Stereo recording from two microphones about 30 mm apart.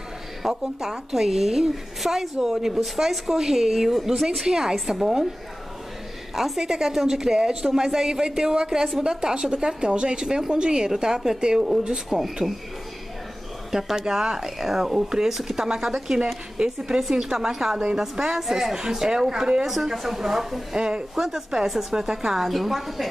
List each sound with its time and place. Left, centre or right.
0.5 s a woman's voice: centre
6.3 s a woman's voice: centre
6.6 s a woman's voice: centre
10.2 s a woman's voice: centre
12.1 s a woman's voice: centre
13.7 s a woman's voice: centre
19.6 s a woman's voice: centre
20.7 s a woman's voice: right
22.5 s a woman's voice: centre